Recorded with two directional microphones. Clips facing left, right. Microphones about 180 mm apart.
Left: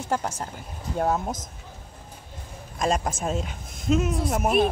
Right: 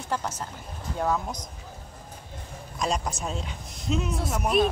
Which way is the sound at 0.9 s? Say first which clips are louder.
Left 2 dB; 45° left (ahead or behind).